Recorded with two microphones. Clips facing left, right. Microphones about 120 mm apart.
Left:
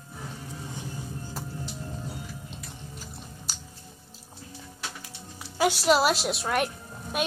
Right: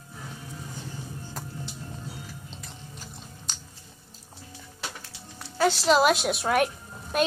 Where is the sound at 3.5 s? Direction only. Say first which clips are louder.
Right 2 dB; 5° left (ahead or behind).